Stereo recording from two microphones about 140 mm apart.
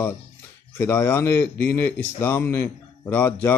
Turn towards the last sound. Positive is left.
turn(degrees=15)  # may be behind; listen again after turning